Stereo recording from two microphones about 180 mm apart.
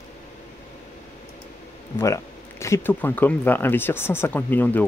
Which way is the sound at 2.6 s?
15° left (ahead or behind).